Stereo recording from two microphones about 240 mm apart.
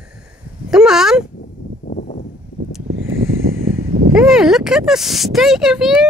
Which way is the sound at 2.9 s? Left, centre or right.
Right.